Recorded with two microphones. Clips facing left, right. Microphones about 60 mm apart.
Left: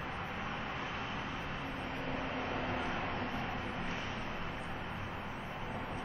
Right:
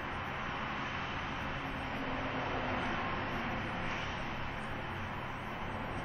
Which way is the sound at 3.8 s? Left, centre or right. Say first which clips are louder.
Right 1 dB; right.